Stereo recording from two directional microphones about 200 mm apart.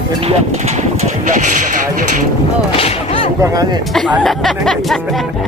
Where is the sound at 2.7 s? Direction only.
30° left (ahead or behind).